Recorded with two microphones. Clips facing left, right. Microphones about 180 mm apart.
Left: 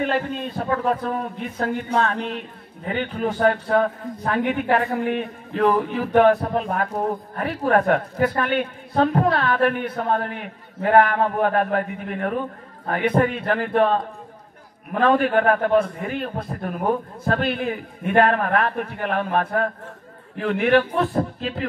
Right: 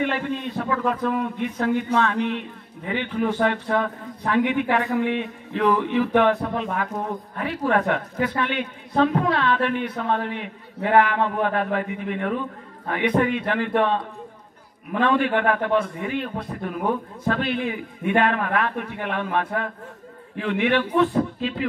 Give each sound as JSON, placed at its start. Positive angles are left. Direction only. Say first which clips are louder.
{"t": 0.0, "sound": "a man's voice", "louder": "left 1 dB", "side_deg": 35}